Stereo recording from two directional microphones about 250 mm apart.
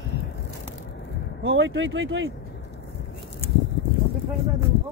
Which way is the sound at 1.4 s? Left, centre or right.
Right.